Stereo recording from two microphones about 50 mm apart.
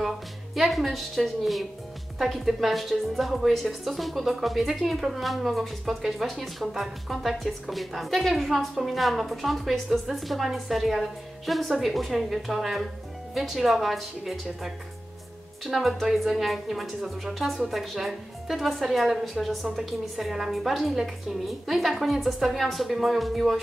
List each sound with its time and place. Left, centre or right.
0.6 s a woman's voice: centre